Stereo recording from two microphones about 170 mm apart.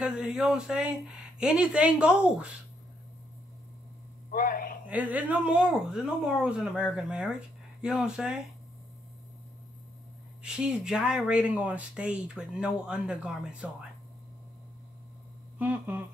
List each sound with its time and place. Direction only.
0.0 s speech: 5° right (ahead or behind)
4.3 s speech: 55° left (ahead or behind)
4.8 s speech: 10° right (ahead or behind)
10.4 s speech: 5° right (ahead or behind)
15.6 s speech: 10° right (ahead or behind)